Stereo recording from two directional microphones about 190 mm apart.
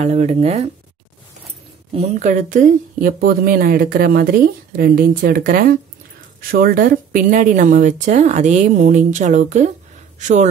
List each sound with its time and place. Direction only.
0.0 s speech: 35° right (ahead or behind)
2.0 s speech: 40° right (ahead or behind)